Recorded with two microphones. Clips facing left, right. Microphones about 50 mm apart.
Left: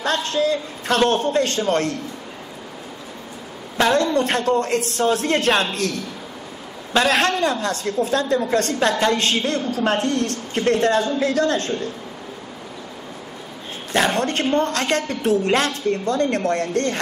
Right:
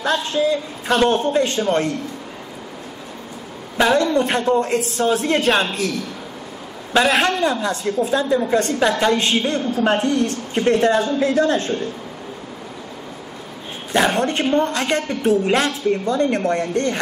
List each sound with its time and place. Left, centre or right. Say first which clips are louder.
0.0 s a woman's voice: right 1 dB; centre
3.7 s a man's voice: right 1 dB; centre
14.1 s a woman's voice: right 2 dB; centre